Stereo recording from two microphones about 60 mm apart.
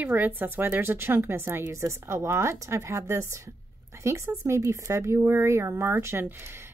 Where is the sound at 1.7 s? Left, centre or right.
Right.